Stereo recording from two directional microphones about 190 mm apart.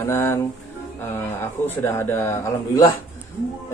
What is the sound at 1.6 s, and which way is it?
A man's voice, 10° left (ahead or behind).